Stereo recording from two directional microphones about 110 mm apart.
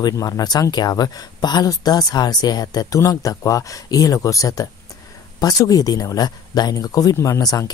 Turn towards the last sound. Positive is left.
turn(degrees=30)  # may be behind; listen again after turning